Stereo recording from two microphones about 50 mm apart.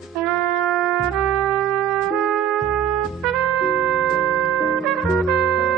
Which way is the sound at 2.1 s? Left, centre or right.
Centre.